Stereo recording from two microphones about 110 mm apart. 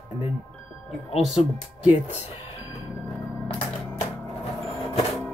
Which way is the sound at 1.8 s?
15° right (ahead or behind).